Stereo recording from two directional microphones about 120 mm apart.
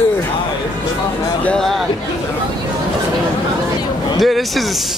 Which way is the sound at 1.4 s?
5° left (ahead or behind).